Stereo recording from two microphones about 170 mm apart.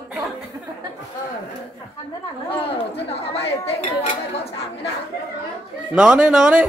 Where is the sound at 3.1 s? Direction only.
35° left (ahead or behind).